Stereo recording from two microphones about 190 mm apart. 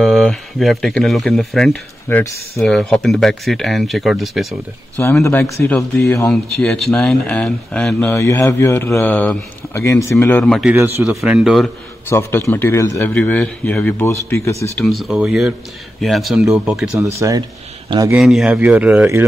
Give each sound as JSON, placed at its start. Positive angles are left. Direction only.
{"t": 0.0, "sound": "speech", "side_deg": 0}
{"t": 4.9, "sound": "speech", "side_deg": 10}
{"t": 10.7, "sound": "speech", "side_deg": -10}
{"t": 12.1, "sound": "speech", "side_deg": 15}
{"t": 14.9, "sound": "speech", "side_deg": -5}
{"t": 16.9, "sound": "speech", "side_deg": -15}
{"t": 18.1, "sound": "a man's voice", "side_deg": 0}